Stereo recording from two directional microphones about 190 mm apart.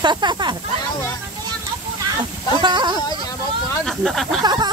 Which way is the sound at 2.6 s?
25° right (ahead or behind).